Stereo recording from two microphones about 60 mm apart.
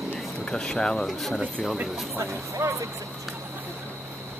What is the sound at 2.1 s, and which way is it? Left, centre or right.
Speech, right.